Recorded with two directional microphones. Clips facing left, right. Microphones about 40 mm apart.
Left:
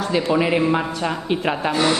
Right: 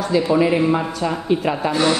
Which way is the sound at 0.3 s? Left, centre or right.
Left.